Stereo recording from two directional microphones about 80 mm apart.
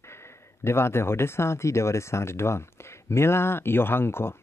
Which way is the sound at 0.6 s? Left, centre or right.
Left.